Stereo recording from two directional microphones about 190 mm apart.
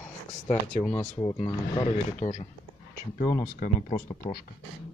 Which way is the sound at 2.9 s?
50° left (ahead or behind).